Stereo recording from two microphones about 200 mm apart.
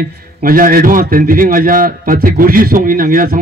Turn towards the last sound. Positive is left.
turn(degrees=-45)  # may be behind; listen again after turning